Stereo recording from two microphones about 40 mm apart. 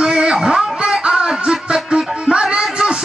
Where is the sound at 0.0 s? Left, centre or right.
Centre.